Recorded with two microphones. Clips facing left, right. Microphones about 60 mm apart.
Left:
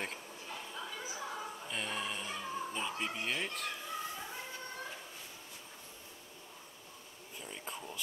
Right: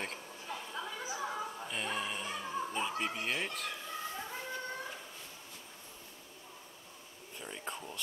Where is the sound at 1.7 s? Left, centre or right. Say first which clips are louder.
Even; centre.